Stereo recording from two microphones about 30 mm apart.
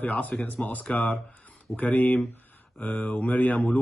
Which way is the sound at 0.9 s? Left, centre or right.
Left.